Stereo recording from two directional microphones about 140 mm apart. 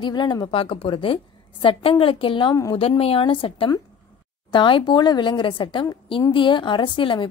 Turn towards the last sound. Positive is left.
turn(degrees=35)  # may be behind; listen again after turning